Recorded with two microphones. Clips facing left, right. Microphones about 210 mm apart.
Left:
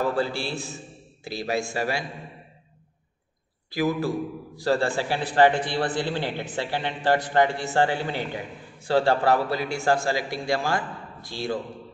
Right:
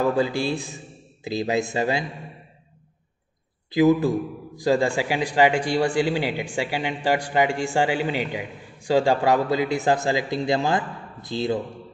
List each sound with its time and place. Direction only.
0.0 s a man's voice: 15° right (ahead or behind)
3.7 s a man's voice: 20° right (ahead or behind)